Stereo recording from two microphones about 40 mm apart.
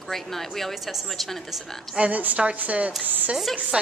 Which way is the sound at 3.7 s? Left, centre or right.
Right.